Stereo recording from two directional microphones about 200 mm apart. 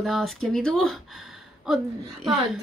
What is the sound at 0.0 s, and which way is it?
Speech, centre (ahead or behind).